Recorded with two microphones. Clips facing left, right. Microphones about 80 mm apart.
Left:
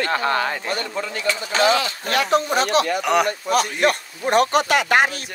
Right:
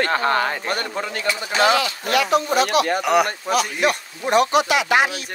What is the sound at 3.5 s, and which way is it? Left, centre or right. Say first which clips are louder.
Speech: left 1 dB; left.